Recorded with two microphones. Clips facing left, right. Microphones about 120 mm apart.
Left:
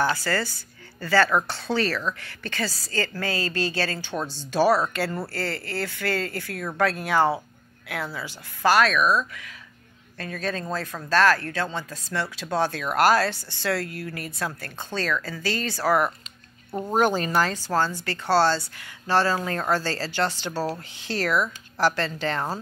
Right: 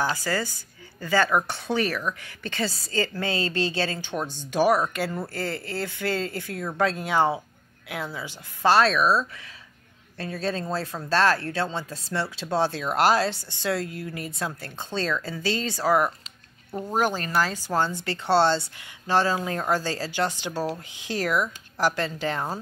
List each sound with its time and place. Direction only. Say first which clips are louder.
0.0 s a woman's voice: left 2 dB; 15° right (ahead or behind)
16.9 s speech: left 3 dB; centre (ahead or behind)
17.6 s a woman's voice: left 1 dB; 20° right (ahead or behind)